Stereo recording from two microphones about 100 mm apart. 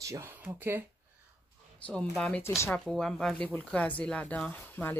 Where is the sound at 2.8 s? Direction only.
5° left (ahead or behind).